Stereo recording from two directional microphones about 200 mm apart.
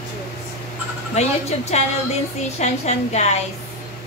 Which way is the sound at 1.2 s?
35° left (ahead or behind).